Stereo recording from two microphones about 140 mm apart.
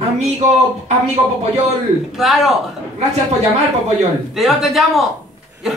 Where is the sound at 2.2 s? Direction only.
Centre (ahead or behind).